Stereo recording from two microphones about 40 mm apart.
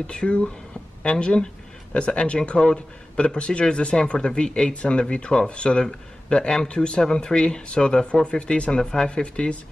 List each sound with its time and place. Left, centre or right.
0.0 s a man's voice: left